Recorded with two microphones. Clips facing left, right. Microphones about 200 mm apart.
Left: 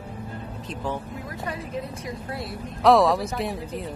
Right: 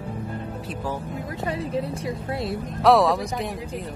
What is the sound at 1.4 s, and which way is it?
A woman's voice, 25° right (ahead or behind).